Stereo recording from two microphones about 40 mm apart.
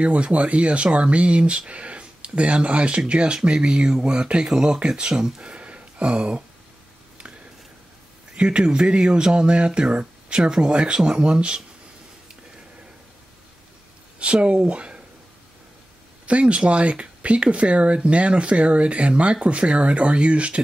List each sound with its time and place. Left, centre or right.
0.0 s speech: right
8.4 s speech: right
14.2 s speech: right
16.3 s speech: right